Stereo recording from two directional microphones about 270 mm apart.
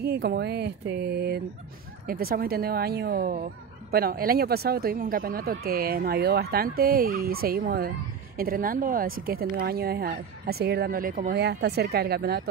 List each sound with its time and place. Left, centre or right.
0.0 s speech: right